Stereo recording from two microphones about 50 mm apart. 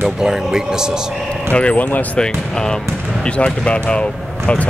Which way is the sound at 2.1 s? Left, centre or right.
Centre.